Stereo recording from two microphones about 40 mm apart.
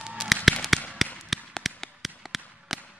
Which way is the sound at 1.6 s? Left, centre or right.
Centre.